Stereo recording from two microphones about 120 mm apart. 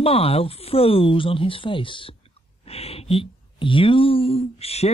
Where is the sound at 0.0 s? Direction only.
55° left (ahead or behind).